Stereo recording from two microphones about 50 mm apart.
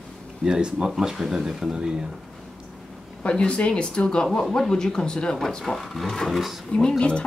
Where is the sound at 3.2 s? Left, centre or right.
Left.